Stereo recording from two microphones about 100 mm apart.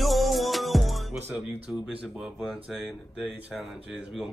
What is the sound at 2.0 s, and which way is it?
Speech, 5° right (ahead or behind).